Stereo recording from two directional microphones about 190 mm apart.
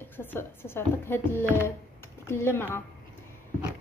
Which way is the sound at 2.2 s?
15° left (ahead or behind).